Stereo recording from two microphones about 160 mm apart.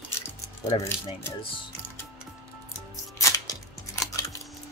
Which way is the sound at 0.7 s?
30° left (ahead or behind).